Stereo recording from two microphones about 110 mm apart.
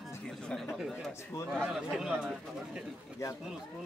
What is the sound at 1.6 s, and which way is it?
Speech, 5° right (ahead or behind).